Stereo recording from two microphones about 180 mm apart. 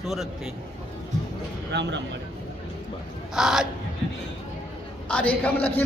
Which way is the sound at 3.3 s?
5° right (ahead or behind).